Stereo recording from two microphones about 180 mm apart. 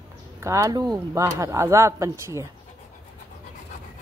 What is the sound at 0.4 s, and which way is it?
Speech, 15° right (ahead or behind).